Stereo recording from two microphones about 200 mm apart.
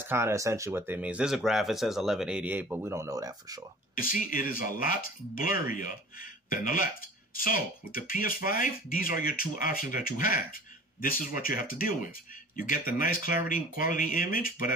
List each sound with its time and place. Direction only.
0.0 s speech: 10° right (ahead or behind)
4.0 s speech: 45° left (ahead or behind)